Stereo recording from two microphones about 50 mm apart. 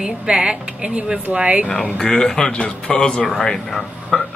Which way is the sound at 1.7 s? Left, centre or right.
Centre.